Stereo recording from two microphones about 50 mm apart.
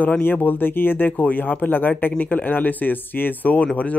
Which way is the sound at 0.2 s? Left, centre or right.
Left.